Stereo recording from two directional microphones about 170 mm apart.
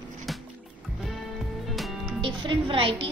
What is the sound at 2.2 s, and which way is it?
Speech, 30° right (ahead or behind).